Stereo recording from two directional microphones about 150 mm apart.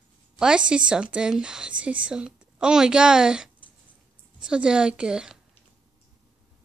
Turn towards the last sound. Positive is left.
turn(degrees=-5)  # may be behind; listen again after turning